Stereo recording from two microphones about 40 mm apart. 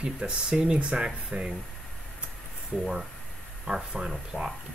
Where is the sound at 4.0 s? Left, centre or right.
Centre.